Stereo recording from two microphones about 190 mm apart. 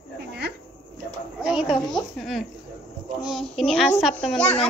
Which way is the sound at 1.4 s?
5° right (ahead or behind).